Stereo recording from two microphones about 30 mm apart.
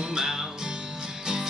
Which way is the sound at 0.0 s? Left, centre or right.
Right.